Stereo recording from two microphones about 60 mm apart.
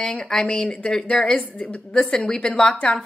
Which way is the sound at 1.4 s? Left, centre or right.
Centre.